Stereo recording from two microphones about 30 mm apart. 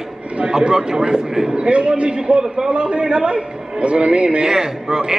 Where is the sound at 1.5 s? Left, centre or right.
Right.